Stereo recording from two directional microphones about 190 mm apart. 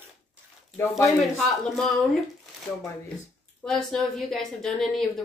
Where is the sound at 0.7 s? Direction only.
15° left (ahead or behind).